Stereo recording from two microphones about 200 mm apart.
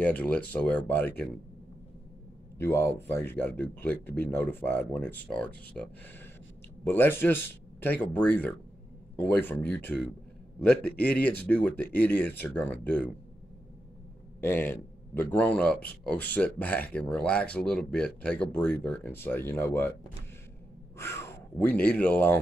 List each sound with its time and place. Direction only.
0.0 s speech: 5° left (ahead or behind)
2.6 s speech: 10° left (ahead or behind)
6.9 s speech: 10° left (ahead or behind)
14.4 s speech: 10° left (ahead or behind)
21.0 s speech: 10° left (ahead or behind)